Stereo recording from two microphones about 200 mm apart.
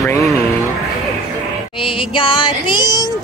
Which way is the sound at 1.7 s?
25° left (ahead or behind).